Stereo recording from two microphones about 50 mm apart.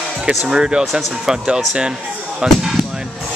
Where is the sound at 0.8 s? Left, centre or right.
Centre.